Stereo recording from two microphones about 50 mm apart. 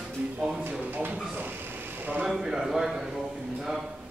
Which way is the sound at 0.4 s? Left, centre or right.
Centre.